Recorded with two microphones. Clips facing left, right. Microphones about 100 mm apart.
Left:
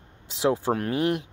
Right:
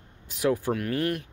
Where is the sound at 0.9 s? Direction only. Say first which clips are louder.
Left 3 dB; 20° left (ahead or behind).